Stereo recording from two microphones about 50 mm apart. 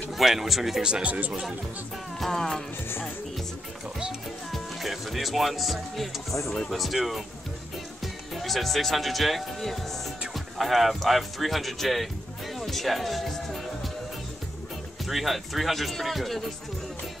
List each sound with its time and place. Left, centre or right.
0.1 s speech: centre
0.8 s speech: right
2.1 s music: centre
4.5 s speech: centre
15.0 s speech: centre